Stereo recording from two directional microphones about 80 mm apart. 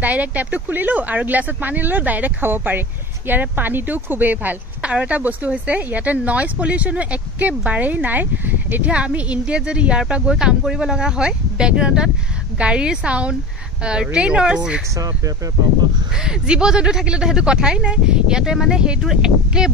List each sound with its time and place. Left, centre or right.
0.0 s speech: centre
16.3 s speech: centre